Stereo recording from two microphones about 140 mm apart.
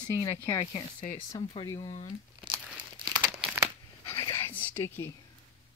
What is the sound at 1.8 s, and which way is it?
Speech, 50° left (ahead or behind).